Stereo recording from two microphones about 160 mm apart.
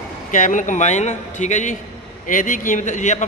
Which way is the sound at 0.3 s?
55° left (ahead or behind).